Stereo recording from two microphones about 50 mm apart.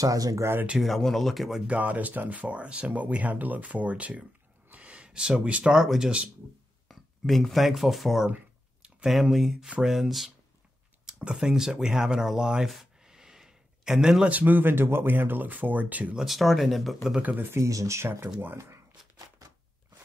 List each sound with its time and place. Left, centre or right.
0.1 s speech: right
0.7 s speech: centre
1.7 s speech: right
4.6 s a sound: right
5.8 s speech: centre
6.9 s speech: centre
11.1 s speech: right
12.7 s a sound: centre
14.2 s speech: right
16.3 s speech: centre
17.6 s speech: right